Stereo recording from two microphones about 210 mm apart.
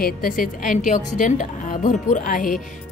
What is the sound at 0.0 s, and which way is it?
A woman's voice, 40° left (ahead or behind).